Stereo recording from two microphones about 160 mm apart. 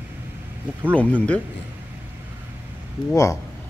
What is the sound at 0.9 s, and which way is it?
Speech, 10° left (ahead or behind).